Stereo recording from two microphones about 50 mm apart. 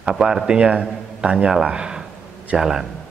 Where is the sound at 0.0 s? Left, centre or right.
Centre.